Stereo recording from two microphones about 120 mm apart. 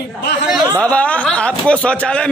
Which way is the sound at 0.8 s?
10° left (ahead or behind).